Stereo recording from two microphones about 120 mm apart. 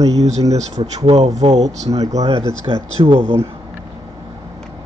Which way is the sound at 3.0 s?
45° right (ahead or behind).